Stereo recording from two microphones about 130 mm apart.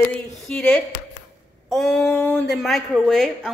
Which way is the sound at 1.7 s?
Centre (ahead or behind).